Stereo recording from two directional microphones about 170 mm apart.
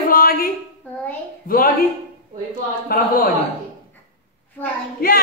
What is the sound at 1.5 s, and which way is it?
Speech, 55° left (ahead or behind).